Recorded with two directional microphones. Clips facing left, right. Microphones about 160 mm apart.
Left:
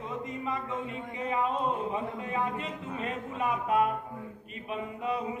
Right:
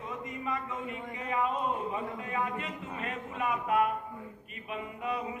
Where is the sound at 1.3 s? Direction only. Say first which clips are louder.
Left 1 dB; 30° left (ahead or behind).